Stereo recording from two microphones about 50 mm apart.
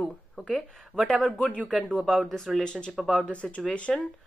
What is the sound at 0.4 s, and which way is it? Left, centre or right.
Speech, centre.